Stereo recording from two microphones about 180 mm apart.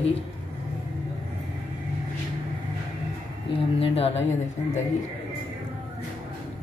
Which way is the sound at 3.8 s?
35° left (ahead or behind).